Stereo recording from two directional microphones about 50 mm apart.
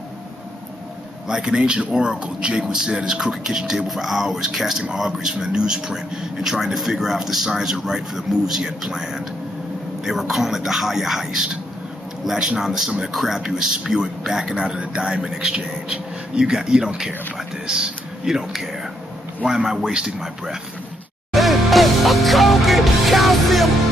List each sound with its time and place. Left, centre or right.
1.3 s a man's voice: centre
21.3 s music: centre